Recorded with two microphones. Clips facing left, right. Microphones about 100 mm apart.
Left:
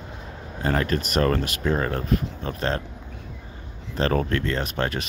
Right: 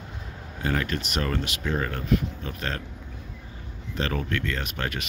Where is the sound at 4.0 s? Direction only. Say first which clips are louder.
Left 6 dB; 40° left (ahead or behind).